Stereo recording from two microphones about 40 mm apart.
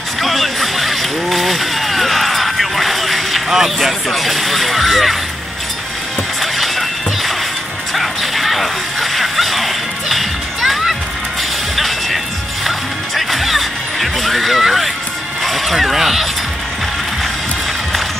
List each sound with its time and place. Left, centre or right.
0.2 s vehicle: centre
4.1 s speech: centre
6.4 s music: centre
15.4 s speech: centre